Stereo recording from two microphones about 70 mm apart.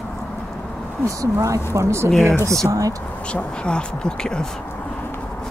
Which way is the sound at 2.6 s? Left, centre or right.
Right.